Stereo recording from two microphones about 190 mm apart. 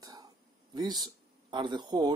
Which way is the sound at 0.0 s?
20° right (ahead or behind).